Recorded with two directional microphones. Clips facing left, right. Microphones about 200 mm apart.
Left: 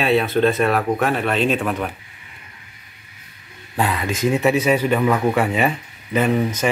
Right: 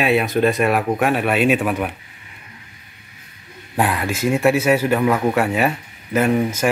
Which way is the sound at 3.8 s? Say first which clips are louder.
Right 1 dB; 10° right (ahead or behind).